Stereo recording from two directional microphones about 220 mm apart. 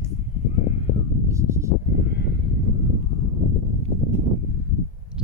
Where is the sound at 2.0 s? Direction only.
50° left (ahead or behind).